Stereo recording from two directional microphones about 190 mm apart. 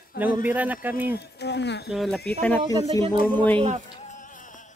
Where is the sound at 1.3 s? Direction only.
65° left (ahead or behind).